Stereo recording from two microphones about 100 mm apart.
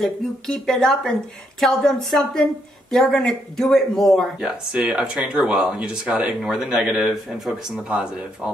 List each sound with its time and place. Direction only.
0.0 s speech: 5° left (ahead or behind)